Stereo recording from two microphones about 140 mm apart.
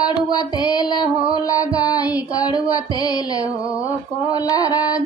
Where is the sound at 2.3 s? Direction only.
25° left (ahead or behind).